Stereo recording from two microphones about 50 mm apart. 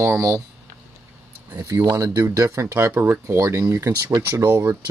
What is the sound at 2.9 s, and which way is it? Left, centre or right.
Speech, right.